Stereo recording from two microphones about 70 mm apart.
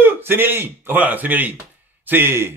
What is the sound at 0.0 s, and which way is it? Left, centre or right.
A man's voice, right.